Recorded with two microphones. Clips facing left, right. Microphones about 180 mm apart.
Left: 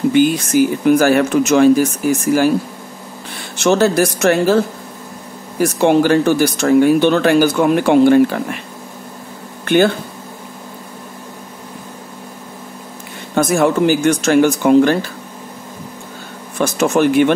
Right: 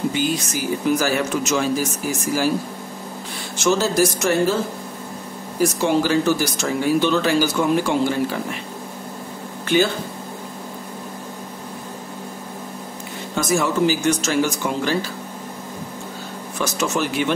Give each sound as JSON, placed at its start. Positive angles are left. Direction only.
{"t": 0.1, "sound": "speech", "side_deg": 55}
{"t": 3.5, "sound": "speech", "side_deg": 60}
{"t": 9.7, "sound": "speech", "side_deg": 55}
{"t": 13.3, "sound": "speech", "side_deg": 55}
{"t": 16.5, "sound": "speech", "side_deg": 55}